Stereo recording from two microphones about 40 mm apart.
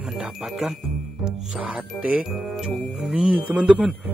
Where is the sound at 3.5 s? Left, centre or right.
Centre.